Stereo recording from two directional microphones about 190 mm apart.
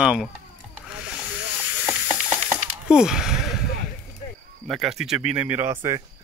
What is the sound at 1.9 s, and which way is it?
Hiss, 5° right (ahead or behind).